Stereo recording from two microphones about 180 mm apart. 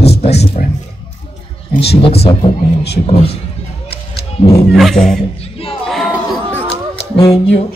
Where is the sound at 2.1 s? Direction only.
35° left (ahead or behind).